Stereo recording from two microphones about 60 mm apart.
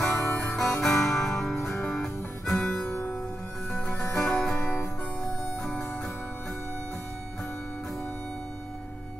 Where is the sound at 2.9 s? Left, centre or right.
Left.